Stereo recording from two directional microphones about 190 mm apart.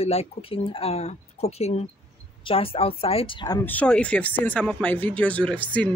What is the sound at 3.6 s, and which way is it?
Speech, 5° left (ahead or behind).